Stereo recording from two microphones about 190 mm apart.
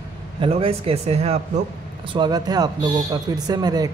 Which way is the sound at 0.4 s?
30° right (ahead or behind).